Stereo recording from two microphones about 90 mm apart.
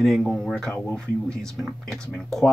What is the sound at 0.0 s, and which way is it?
Speech, centre (ahead or behind).